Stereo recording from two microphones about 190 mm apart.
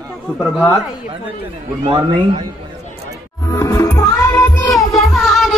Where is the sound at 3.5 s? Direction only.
15° left (ahead or behind).